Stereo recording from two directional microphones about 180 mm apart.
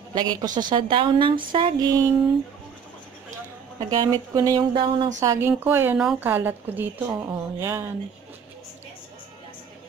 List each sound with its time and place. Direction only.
0.1 s a woman's voice: 25° right (ahead or behind)
3.9 s a woman's voice: 20° right (ahead or behind)